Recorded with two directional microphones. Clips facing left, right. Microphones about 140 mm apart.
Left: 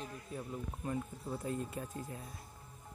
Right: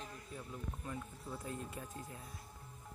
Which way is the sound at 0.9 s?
30° left (ahead or behind).